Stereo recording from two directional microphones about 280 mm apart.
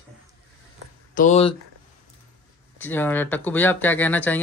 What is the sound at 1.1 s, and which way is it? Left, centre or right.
Speech, left.